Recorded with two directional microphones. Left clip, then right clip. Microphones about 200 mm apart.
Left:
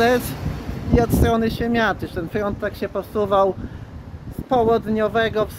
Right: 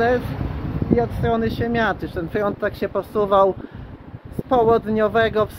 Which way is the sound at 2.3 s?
10° right (ahead or behind).